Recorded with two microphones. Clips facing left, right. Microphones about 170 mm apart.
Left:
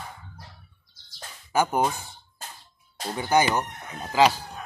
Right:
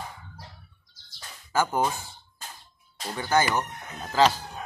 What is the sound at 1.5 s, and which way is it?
Speech, 15° left (ahead or behind).